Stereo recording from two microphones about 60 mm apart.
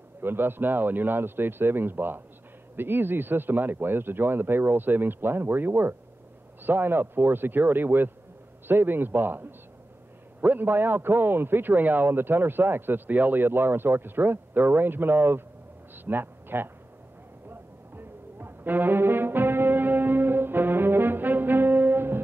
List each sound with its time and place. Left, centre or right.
0.2 s a man's voice: right
15.9 s a sound: right
17.5 s music: right